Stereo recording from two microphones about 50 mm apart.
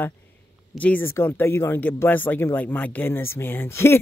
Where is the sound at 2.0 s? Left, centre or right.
Left.